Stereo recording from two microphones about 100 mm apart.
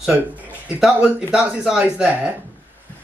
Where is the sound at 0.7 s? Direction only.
5° right (ahead or behind).